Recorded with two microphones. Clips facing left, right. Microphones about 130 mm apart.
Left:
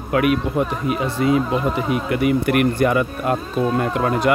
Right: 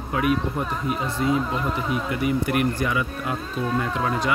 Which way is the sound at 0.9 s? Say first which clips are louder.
Left 3 dB; 85° left.